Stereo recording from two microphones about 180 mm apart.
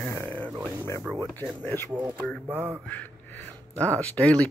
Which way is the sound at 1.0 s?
10° right (ahead or behind).